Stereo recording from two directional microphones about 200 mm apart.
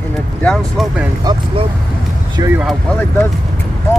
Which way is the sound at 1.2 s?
20° right (ahead or behind).